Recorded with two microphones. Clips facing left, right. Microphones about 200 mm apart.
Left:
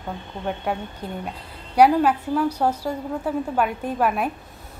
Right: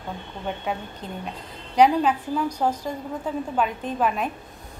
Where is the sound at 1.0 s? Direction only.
10° left (ahead or behind).